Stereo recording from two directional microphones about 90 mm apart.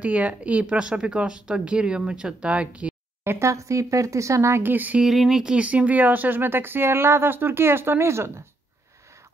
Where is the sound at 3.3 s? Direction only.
30° right (ahead or behind).